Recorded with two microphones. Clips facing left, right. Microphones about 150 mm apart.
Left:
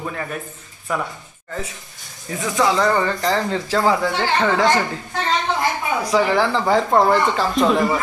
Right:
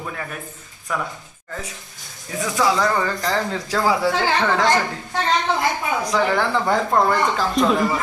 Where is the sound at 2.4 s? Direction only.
Centre (ahead or behind).